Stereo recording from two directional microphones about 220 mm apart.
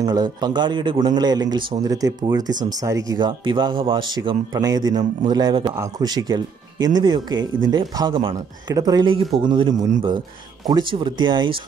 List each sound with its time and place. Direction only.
0.0 s a man's voice: 20° right (ahead or behind)